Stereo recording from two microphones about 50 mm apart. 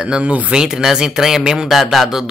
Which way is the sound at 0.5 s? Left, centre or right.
Centre.